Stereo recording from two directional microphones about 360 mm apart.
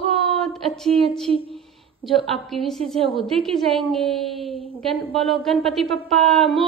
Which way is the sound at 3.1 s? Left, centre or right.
Centre.